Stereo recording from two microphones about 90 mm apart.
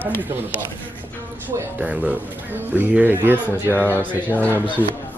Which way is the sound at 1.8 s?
15° right (ahead or behind).